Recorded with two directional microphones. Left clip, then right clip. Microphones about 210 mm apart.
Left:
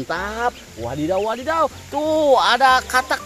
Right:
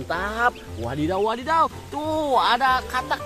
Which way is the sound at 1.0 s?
5° left (ahead or behind).